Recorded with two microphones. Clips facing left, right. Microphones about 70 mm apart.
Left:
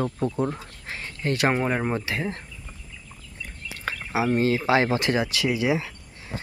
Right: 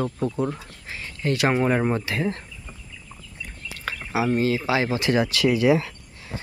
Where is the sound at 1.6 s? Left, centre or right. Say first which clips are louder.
Right 3 dB; centre.